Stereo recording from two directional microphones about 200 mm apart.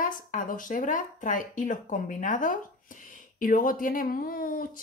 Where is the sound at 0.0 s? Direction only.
40° left (ahead or behind).